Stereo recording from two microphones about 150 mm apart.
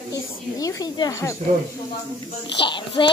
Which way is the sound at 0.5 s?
25° left (ahead or behind).